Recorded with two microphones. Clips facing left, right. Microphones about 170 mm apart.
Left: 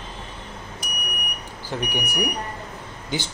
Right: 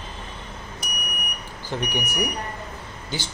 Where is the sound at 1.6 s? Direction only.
10° left (ahead or behind).